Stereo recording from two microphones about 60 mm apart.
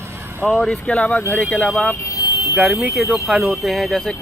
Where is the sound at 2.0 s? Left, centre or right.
Left.